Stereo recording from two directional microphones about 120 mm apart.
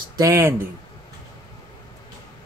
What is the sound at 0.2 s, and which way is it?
Speech, 25° right (ahead or behind).